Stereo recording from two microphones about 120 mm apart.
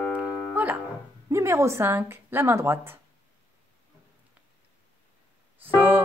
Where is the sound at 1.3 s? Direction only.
25° right (ahead or behind).